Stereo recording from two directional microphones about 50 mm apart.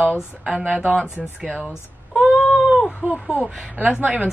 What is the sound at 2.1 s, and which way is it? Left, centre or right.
Cat, centre.